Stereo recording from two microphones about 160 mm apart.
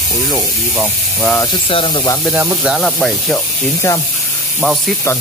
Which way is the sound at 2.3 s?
10° right (ahead or behind).